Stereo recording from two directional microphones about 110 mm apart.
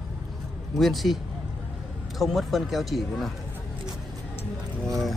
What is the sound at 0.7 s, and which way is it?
Speech, centre (ahead or behind).